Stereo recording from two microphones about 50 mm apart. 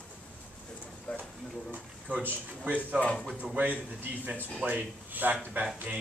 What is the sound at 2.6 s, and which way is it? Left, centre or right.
Speech, right.